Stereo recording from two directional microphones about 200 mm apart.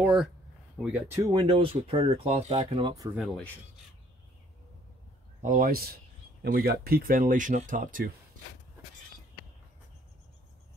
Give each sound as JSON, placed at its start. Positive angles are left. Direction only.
{"t": 0.0, "sound": "speech", "side_deg": -5}
{"t": 5.4, "sound": "speech", "side_deg": -45}